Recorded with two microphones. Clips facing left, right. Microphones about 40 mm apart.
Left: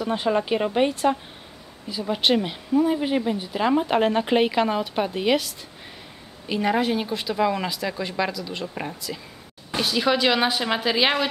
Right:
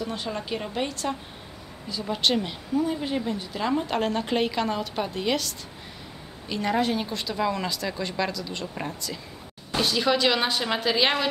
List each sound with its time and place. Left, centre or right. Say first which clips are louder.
0.0 s speech: left 8 dB; left; by 11.2 s centre